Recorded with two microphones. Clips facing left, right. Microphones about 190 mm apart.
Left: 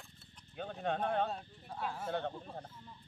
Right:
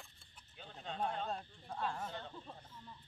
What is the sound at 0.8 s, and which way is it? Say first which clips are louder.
Speech: left 6 dB; 60° left (ahead or behind).